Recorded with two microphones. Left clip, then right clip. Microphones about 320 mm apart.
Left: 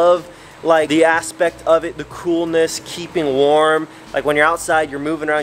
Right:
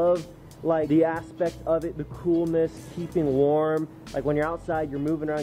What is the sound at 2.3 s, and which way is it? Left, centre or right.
Speech, left.